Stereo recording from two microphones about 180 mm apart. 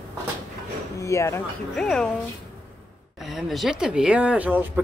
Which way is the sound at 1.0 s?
15° left (ahead or behind).